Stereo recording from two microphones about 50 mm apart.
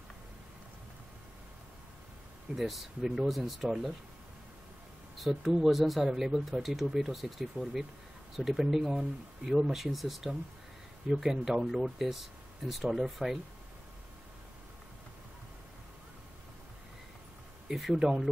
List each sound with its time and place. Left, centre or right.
2.5 s speech: centre
5.1 s speech: centre
17.9 s speech: centre